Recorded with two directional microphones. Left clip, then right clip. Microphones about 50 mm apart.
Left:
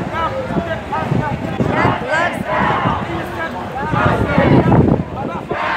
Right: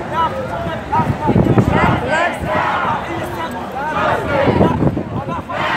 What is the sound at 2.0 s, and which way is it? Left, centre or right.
Battle cry, centre.